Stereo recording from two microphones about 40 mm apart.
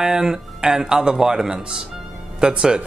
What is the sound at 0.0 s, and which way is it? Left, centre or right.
Speech, centre.